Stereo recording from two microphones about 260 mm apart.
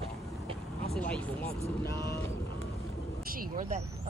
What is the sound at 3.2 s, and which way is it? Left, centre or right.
Speech, right.